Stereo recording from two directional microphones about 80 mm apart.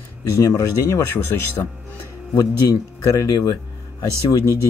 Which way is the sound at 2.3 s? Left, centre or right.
Left.